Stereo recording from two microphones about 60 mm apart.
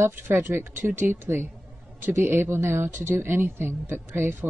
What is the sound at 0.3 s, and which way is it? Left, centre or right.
A woman's voice, right.